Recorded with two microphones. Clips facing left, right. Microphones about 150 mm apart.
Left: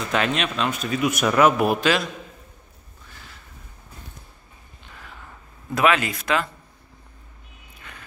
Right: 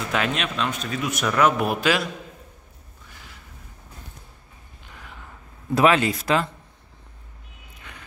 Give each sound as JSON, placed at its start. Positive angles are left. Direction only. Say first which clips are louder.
{"t": 0.1, "sound": "speech", "louder": "left 2 dB", "side_deg": -5}
{"t": 1.6, "sound": "a man's voice", "louder": "left 2 dB", "side_deg": 0}
{"t": 3.1, "sound": "a sound", "louder": "left 1 dB", "side_deg": -15}
{"t": 5.8, "sound": "speech", "louder": "right 2 dB", "side_deg": -30}